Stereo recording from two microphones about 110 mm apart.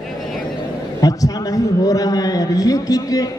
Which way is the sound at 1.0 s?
35° left (ahead or behind).